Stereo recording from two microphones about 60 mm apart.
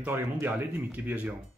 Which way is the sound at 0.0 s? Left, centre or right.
Right.